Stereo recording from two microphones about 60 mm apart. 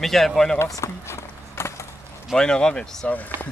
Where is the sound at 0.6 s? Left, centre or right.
Left.